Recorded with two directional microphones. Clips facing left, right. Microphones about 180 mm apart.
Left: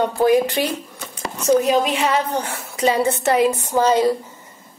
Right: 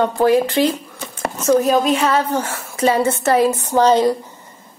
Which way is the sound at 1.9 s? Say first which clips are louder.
Right 3 dB; 15° left (ahead or behind).